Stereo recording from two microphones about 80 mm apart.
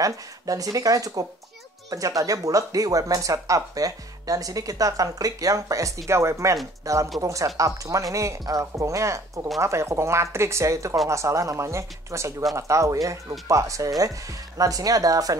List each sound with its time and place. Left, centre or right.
0.0 s speech: right